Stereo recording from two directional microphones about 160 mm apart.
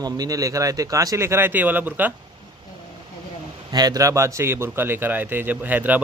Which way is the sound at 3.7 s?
25° right (ahead or behind).